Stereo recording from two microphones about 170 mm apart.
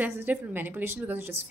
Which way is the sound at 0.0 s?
10° right (ahead or behind).